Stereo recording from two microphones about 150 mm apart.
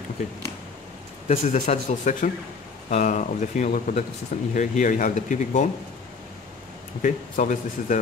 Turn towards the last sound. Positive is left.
turn(degrees=60)  # may be behind; listen again after turning